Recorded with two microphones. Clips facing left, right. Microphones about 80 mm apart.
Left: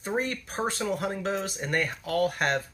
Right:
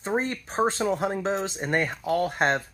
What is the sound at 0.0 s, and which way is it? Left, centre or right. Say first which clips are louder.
Speech: right 2 dB; right.